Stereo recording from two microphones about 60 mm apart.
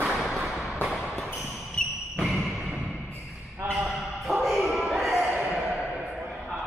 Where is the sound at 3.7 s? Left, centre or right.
Centre.